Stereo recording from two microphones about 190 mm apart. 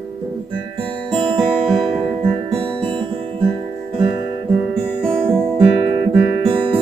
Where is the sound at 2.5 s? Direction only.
30° right (ahead or behind).